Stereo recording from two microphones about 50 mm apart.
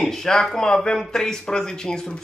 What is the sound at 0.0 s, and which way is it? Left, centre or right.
Speech, centre.